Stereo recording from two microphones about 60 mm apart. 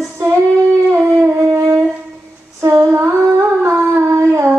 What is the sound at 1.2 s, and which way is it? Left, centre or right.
Wind instrument, right.